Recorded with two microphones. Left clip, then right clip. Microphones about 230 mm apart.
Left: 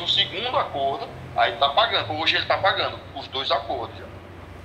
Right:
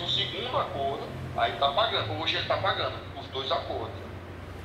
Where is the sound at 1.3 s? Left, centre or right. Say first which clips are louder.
Left 6 dB; left.